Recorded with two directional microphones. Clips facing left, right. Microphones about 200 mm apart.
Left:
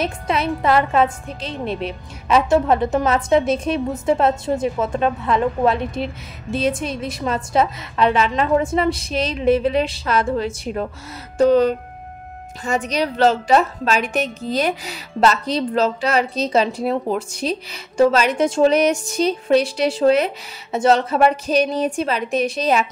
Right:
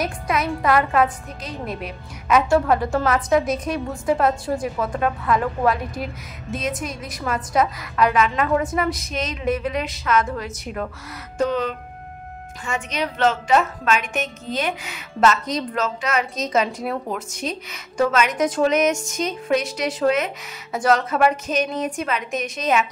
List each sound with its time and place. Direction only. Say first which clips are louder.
0.0 s a woman's voice: left 2 dB; 30° left (ahead or behind)